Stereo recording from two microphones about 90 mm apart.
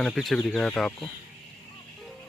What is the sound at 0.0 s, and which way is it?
Speech, centre (ahead or behind).